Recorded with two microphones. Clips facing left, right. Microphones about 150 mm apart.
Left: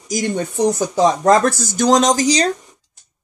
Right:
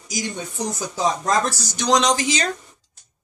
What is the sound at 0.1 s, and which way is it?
Speech, 55° left (ahead or behind).